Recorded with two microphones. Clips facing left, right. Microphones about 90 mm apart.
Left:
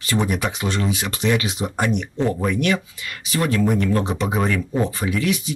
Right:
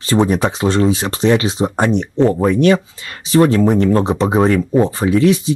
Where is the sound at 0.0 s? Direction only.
30° right (ahead or behind).